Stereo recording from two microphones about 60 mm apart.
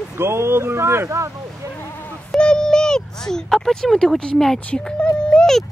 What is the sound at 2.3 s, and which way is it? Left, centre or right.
Speech, centre.